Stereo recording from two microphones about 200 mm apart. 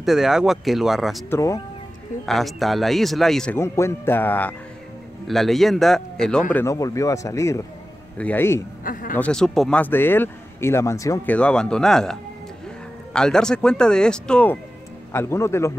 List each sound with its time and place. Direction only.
0.0 s speech: centre (ahead or behind)
1.3 s speech: 15° left (ahead or behind)
2.2 s speech: centre (ahead or behind)
3.5 s speech: 15° left (ahead or behind)
6.5 s speech: 15° left (ahead or behind)
8.8 s speech: 40° left (ahead or behind)
9.2 s speech: 5° left (ahead or behind)